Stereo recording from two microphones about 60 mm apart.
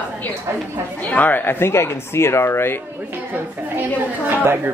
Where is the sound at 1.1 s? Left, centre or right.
Left.